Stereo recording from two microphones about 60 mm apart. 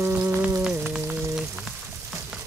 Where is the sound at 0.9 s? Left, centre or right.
Centre.